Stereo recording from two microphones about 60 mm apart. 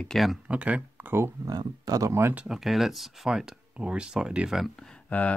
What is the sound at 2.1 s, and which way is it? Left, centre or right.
Speech, right.